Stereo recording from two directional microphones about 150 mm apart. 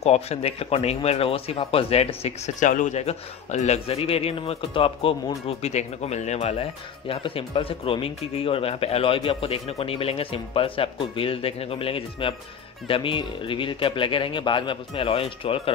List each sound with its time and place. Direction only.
0.0 s speech: 45° left (ahead or behind)